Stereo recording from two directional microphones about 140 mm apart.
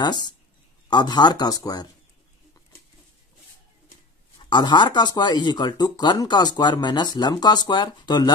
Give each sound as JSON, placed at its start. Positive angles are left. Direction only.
{"t": 0.0, "sound": "speech", "side_deg": 30}
{"t": 4.4, "sound": "speech", "side_deg": 35}